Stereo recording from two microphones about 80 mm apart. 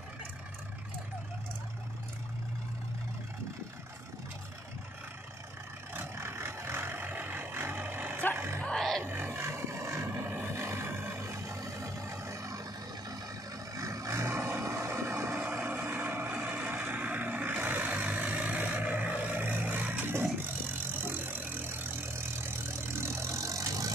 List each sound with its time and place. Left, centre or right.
5.9 s vehicle: right
8.6 s music: centre
9.0 s a sound: right
10.6 s vehicle: right
13.7 s vehicle: right